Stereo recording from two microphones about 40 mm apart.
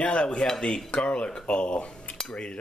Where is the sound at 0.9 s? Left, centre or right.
Left.